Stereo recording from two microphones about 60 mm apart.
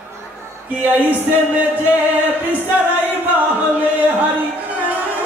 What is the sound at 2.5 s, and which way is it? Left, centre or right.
Music, right.